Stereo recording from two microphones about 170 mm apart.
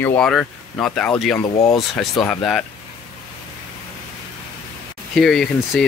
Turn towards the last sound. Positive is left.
turn(degrees=0)  # may be behind; listen again after turning